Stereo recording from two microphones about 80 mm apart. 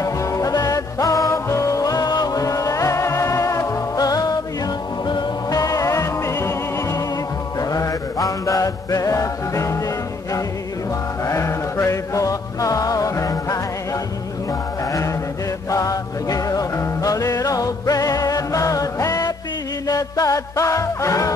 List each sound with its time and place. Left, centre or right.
0.0 s music: left
5.0 s music: left
5.6 s music: left
7.7 s music: left
11.2 s music: left
14.9 s mantra: left
15.7 s music: left